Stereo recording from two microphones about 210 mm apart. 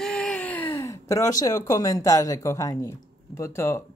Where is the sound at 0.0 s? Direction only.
5° left (ahead or behind).